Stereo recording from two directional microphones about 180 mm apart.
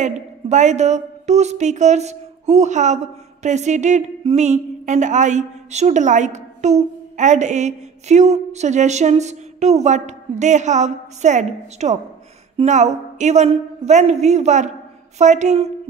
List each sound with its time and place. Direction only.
0.0 s a woman's voice: 40° right (ahead or behind)